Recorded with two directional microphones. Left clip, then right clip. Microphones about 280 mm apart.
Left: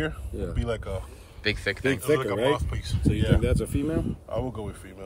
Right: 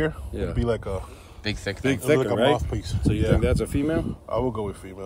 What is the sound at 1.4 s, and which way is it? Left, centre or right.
Speech, centre.